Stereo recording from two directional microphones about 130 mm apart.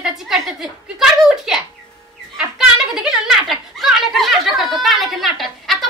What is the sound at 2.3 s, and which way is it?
Children playing, 5° right (ahead or behind).